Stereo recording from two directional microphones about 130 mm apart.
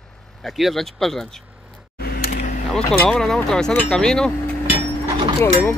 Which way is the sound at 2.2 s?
90° left.